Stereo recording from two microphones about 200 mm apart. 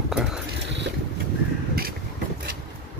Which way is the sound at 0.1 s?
5° right (ahead or behind).